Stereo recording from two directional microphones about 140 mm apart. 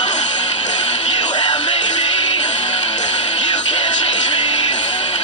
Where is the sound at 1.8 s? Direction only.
45° left (ahead or behind).